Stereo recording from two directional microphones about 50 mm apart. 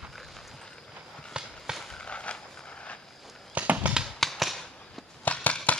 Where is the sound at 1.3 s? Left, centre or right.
Centre.